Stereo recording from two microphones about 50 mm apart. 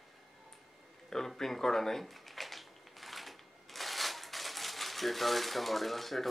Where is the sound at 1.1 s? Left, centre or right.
Centre.